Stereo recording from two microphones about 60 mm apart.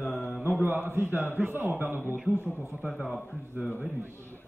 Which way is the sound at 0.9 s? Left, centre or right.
Right.